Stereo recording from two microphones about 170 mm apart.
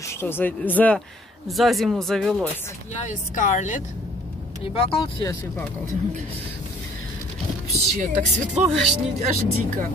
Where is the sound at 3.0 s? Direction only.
45° left (ahead or behind).